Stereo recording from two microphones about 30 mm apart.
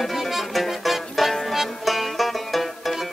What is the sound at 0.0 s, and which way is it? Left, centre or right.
Music, centre.